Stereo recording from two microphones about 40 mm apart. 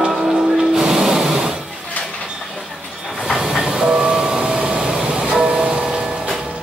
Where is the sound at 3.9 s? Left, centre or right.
Centre.